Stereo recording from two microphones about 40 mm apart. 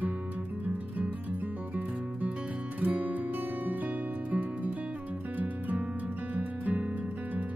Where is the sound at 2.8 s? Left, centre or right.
Right.